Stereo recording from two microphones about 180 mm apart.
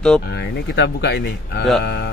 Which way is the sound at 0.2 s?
65° left (ahead or behind).